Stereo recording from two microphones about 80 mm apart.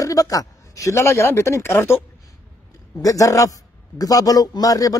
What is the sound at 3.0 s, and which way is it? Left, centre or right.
A man's voice, left.